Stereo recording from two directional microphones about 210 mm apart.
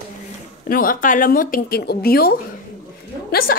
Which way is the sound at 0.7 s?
45° left (ahead or behind).